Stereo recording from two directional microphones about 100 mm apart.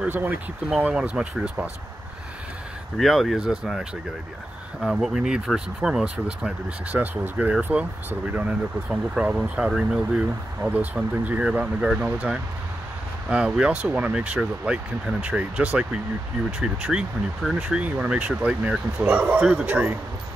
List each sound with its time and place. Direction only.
0.1 s speech: 20° right (ahead or behind)
0.7 s speech: 5° right (ahead or behind)
3.0 s speech: centre (ahead or behind)
4.8 s speech: 5° right (ahead or behind)